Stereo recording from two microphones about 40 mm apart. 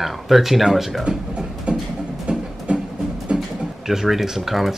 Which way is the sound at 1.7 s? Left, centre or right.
Right.